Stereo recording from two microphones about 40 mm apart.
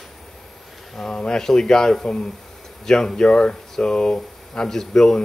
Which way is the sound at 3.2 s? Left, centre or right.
Left.